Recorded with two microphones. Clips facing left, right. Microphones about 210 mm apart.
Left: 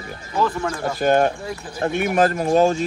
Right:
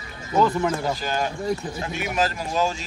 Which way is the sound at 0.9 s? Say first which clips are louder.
Left 9 dB; 55° left (ahead or behind).